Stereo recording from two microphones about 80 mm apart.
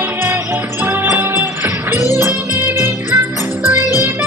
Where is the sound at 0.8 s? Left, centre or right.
Right.